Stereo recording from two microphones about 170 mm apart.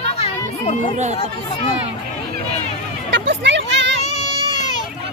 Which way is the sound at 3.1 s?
90° right.